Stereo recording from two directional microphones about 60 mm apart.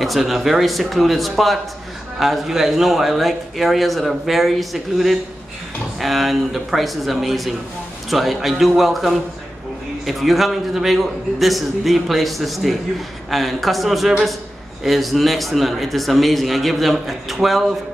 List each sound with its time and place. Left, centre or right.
0.0 s speech: centre